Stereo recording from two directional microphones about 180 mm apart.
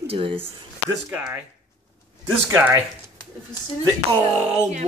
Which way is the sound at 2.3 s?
15° right (ahead or behind).